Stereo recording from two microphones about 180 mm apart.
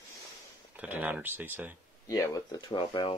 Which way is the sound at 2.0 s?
20° left (ahead or behind).